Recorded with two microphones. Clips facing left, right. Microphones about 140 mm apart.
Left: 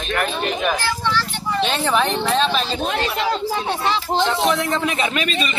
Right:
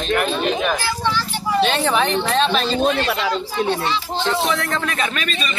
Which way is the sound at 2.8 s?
70° right (ahead or behind).